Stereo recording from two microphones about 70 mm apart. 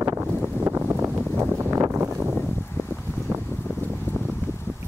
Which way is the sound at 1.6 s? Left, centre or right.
Right.